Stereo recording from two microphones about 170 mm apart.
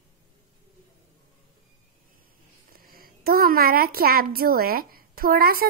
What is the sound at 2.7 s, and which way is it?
A woman's voice, 60° right (ahead or behind).